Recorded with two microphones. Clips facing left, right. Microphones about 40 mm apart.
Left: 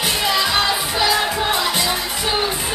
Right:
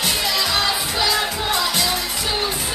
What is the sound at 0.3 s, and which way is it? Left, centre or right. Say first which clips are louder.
Music: left 4 dB; centre.